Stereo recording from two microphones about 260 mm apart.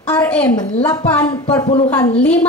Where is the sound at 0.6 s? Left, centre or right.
Left.